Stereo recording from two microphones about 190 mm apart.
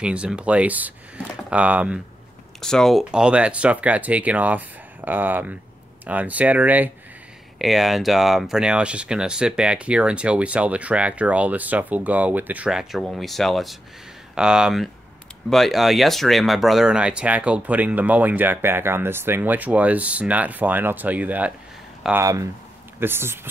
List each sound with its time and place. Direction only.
0.0 s speech: 5° right (ahead or behind)